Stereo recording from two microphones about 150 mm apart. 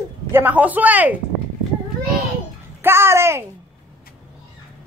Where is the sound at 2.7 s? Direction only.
15° right (ahead or behind).